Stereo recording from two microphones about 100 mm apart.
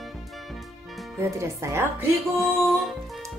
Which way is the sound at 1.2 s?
25° right (ahead or behind).